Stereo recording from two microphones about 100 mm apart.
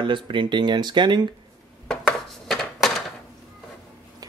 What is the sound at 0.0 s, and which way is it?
Speech, 55° right (ahead or behind).